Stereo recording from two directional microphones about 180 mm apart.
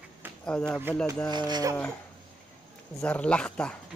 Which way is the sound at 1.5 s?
20° right (ahead or behind).